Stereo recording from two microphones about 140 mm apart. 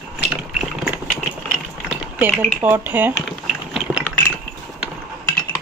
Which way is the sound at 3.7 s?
5° right (ahead or behind).